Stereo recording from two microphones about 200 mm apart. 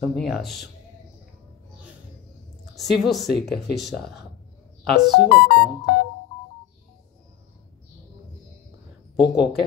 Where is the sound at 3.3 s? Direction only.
55° left (ahead or behind).